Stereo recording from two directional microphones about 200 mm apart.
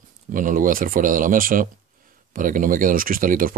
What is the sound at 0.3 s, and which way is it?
Speech, 40° right (ahead or behind).